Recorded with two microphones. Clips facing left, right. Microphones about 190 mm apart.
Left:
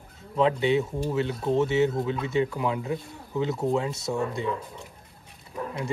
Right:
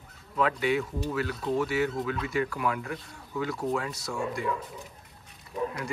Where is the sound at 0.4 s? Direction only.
25° left (ahead or behind).